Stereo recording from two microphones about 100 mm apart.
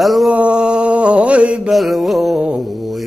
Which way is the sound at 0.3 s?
10° right (ahead or behind).